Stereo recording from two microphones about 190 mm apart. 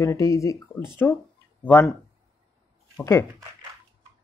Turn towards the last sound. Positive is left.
turn(degrees=15)  # may be behind; listen again after turning